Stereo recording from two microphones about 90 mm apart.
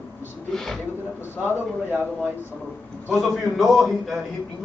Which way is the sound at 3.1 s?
Centre (ahead or behind).